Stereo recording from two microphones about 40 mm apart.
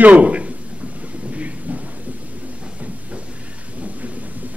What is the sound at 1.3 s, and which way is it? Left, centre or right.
Thunder, right.